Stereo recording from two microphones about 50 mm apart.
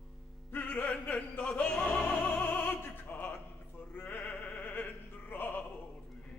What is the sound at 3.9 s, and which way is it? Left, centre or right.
Music, left.